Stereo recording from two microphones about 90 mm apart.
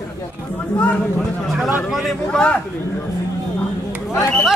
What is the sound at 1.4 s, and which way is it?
Speech, centre (ahead or behind).